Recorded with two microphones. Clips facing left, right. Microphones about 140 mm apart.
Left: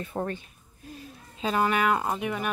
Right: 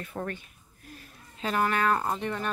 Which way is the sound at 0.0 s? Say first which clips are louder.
Left 4 dB; 25° left (ahead or behind).